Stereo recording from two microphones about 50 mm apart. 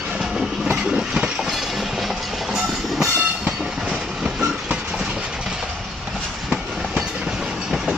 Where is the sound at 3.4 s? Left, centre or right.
Centre.